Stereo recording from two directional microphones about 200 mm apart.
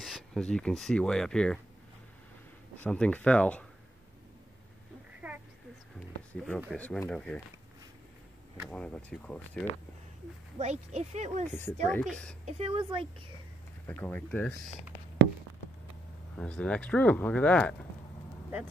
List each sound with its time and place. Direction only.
0.0 s speech: centre (ahead or behind)
2.8 s speech: 5° left (ahead or behind)
5.2 s a sound: centre (ahead or behind)
6.7 s speech: 5° left (ahead or behind)
8.6 s speech: 5° left (ahead or behind)
10.6 s speech: 35° right (ahead or behind)
11.4 s speech: 10° left (ahead or behind)
12.4 s a woman's voice: 30° right (ahead or behind)
13.8 s speech: 10° left (ahead or behind)
16.3 s speech: 5° left (ahead or behind)